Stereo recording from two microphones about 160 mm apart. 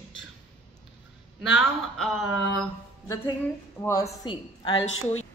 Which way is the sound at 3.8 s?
20° left (ahead or behind).